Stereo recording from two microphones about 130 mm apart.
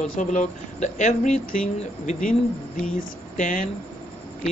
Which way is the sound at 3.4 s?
90° left.